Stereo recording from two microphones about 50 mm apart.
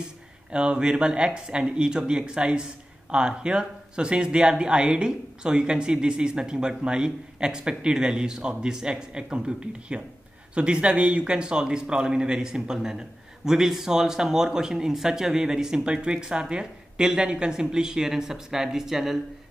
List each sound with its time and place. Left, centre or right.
0.0 s speech: centre